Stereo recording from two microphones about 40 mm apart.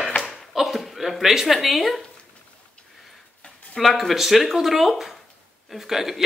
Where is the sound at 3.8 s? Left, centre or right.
Centre.